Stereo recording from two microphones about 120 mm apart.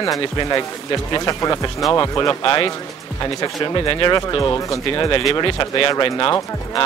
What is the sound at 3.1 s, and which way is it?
Speech, 30° left (ahead or behind).